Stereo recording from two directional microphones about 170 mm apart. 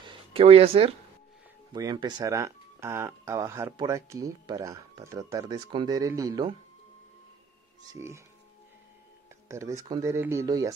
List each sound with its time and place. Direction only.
0.0 s a sound: 30° right (ahead or behind)
1.7 s speech: 25° right (ahead or behind)
8.0 s speech: 15° right (ahead or behind)
9.5 s speech: 15° right (ahead or behind)